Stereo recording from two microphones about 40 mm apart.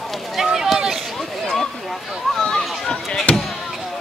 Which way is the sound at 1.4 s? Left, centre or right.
Centre.